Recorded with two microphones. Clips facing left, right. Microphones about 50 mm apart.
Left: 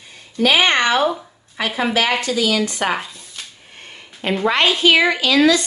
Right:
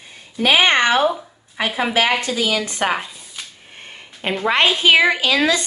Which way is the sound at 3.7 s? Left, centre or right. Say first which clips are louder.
Right 1 dB; right.